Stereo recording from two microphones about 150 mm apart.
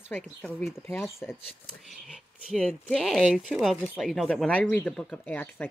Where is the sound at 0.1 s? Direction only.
10° left (ahead or behind).